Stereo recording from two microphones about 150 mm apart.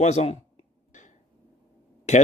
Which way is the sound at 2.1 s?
50° left (ahead or behind).